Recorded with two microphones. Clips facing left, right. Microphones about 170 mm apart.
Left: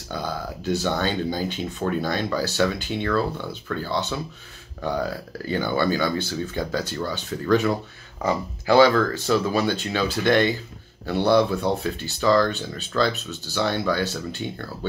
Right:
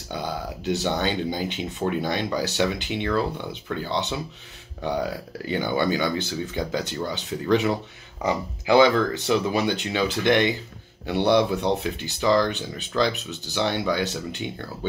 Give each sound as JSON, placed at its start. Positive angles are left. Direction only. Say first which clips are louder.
{"t": 0.1, "sound": "speech", "louder": "even", "side_deg": -20}